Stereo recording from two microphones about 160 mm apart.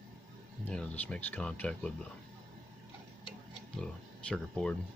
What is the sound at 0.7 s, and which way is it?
Speech, 5° left (ahead or behind).